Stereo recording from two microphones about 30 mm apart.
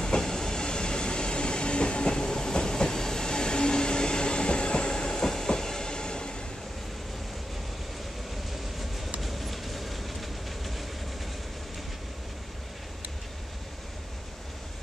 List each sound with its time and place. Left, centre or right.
0.0 s train: centre
9.2 s train: centre